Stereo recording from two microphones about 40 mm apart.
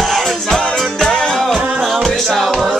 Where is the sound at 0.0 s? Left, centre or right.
Centre.